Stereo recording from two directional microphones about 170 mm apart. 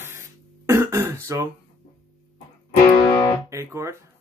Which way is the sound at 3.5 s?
15° right (ahead or behind).